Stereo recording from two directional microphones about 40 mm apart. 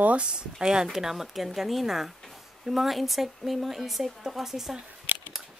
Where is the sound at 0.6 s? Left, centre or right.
Centre.